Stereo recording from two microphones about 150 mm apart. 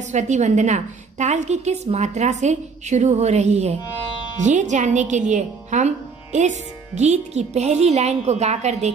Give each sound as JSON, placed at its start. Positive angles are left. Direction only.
{"t": 0.1, "sound": "a woman's voice", "side_deg": -50}